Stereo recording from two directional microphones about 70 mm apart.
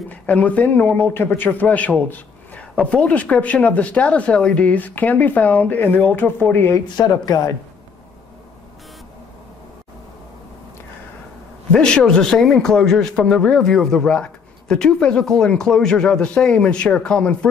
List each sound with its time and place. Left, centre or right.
0.1 s a man's voice: left
7.0 s speech: left
11.7 s speech: centre